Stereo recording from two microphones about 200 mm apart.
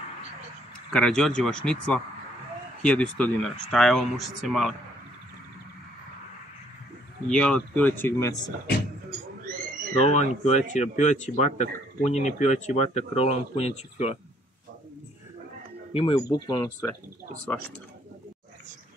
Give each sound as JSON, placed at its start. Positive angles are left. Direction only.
{"t": 0.9, "sound": "speech", "side_deg": 5}
{"t": 7.2, "sound": "speech", "side_deg": 5}
{"t": 9.9, "sound": "speech", "side_deg": 35}
{"t": 15.9, "sound": "speech", "side_deg": 25}
{"t": 16.3, "sound": "speech", "side_deg": 15}